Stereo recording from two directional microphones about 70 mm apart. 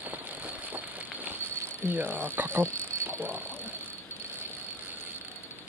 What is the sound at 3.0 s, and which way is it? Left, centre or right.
Vehicle, right.